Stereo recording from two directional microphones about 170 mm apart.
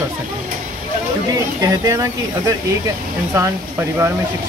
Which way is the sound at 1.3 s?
20° right (ahead or behind).